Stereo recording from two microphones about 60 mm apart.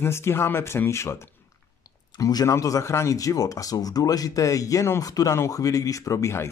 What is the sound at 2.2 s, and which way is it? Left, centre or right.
Speech, left.